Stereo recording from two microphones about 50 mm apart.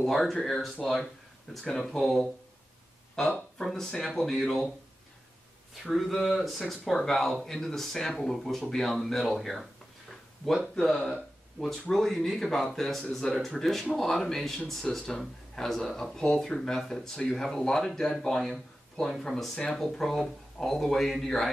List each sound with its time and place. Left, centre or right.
0.0 s speech: centre
5.9 s speech: centre
10.7 s speech: centre